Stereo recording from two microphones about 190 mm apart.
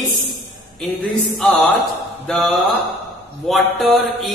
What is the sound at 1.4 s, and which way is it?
Mantra, centre (ahead or behind).